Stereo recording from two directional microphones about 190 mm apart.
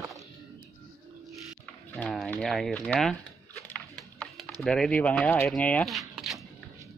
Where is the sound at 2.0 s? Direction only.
5° left (ahead or behind).